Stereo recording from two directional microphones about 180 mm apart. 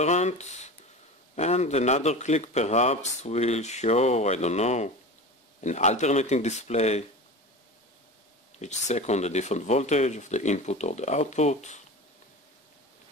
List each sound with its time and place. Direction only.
0.0 s a man's voice: 40° left (ahead or behind)
8.5 s a man's voice: 40° left (ahead or behind)